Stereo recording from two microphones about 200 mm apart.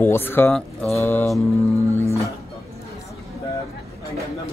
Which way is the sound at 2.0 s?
15° left (ahead or behind).